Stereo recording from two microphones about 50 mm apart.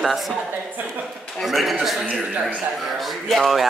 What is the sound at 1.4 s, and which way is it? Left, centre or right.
Speech, centre.